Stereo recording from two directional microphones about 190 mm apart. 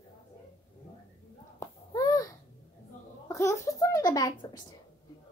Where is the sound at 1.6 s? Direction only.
20° left (ahead or behind).